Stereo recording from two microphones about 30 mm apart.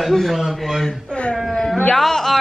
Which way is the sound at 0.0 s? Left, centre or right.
Centre.